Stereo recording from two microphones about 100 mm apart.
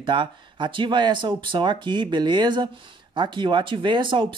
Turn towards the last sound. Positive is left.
turn(degrees=-50)  # may be behind; listen again after turning